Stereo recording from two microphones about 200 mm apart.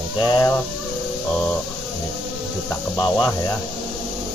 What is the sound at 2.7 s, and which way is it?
Speech, 15° left (ahead or behind).